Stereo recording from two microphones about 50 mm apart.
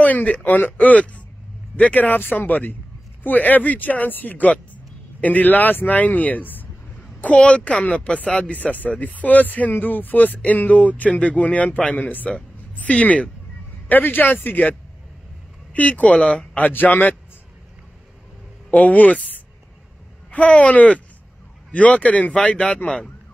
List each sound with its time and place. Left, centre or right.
0.0 s a woman's voice: left
13.8 s speech: left
18.7 s speech: left
20.2 s a woman's voice: left